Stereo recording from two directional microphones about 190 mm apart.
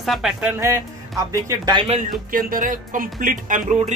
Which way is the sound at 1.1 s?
15° right (ahead or behind).